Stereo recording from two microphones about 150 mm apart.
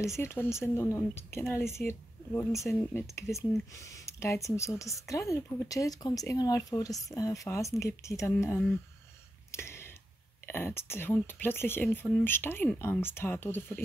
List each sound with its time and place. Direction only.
0.0 s speech: 20° left (ahead or behind)
9.5 s a sound: 15° left (ahead or behind)
10.4 s speech: 15° left (ahead or behind)